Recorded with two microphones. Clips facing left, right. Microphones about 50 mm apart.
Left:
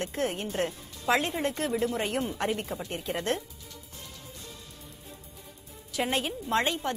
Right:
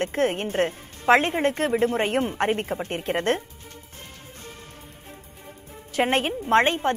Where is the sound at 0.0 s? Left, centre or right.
Right.